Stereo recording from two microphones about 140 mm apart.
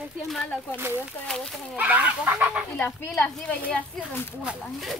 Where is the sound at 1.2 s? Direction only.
5° left (ahead or behind).